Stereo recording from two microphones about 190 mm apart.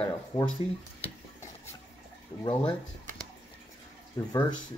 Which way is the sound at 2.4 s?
25° left (ahead or behind).